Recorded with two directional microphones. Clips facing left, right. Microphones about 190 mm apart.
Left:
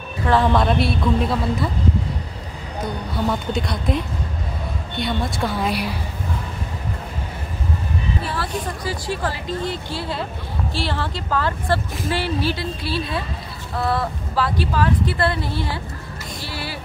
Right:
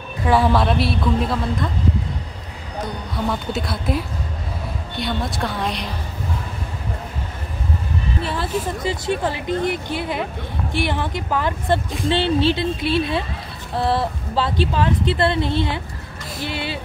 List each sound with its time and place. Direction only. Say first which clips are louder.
0.3 s a woman's voice: even; 5° right (ahead or behind)
3.3 s a woman's voice: even; 5° right (ahead or behind)
8.8 s speech: right 3 dB; 20° right (ahead or behind)
16.3 s vehicle: right 6 dB; 20° right (ahead or behind)